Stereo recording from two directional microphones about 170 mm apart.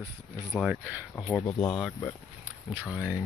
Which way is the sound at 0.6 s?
5° right (ahead or behind).